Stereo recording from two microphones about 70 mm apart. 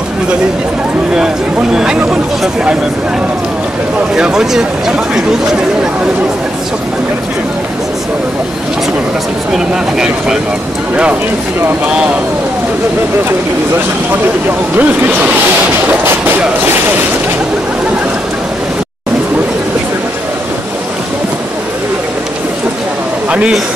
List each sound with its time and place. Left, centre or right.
1.1 s speech: centre
4.1 s speech: centre
9.5 s speech: centre
14.8 s speech: right
15.9 s a sound: right
16.6 s speech: right